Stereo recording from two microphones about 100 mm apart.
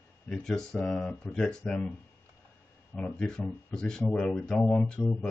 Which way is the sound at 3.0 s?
10° left (ahead or behind).